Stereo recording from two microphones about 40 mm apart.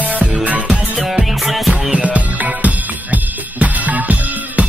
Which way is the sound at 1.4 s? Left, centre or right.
Centre.